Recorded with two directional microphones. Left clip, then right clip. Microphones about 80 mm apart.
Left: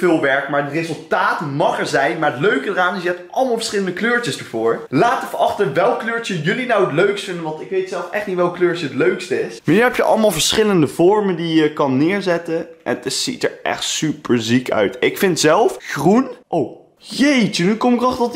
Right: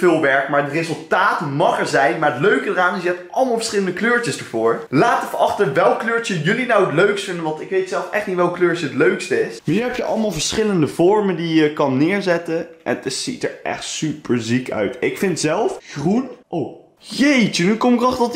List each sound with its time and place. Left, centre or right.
0.0 s speech: centre
9.7 s a man's voice: left
10.4 s speech: left
11.0 s speech: centre; by 16.3 s left
17.2 s speech: centre